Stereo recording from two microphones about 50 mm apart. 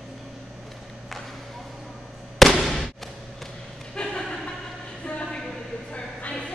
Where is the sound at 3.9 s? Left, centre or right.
Centre.